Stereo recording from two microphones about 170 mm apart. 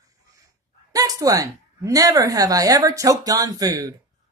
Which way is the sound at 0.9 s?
20° right (ahead or behind).